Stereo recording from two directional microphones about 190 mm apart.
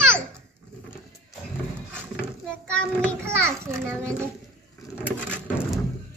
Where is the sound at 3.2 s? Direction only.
15° right (ahead or behind).